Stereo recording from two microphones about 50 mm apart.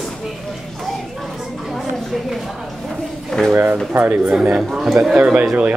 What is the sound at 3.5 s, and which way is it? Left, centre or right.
Speech, right.